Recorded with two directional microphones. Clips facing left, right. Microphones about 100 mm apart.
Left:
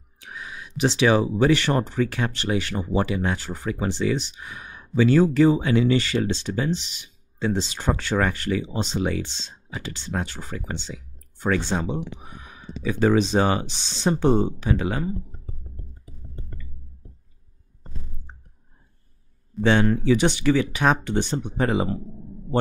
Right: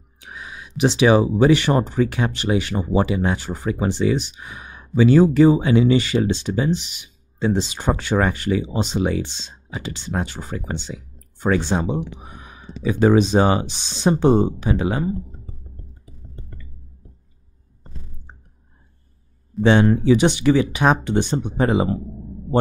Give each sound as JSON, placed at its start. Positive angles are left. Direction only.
{"t": 0.2, "sound": "speech", "side_deg": -15}
{"t": 19.6, "sound": "speech", "side_deg": -20}